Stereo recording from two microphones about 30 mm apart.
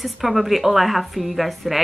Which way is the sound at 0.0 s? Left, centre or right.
Centre.